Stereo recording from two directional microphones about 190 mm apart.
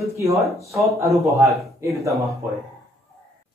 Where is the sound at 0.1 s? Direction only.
15° right (ahead or behind).